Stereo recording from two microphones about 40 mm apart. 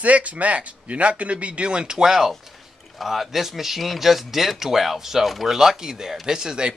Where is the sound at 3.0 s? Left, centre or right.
Centre.